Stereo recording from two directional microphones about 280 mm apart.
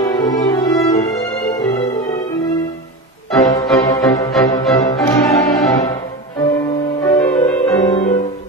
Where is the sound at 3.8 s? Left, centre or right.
Centre.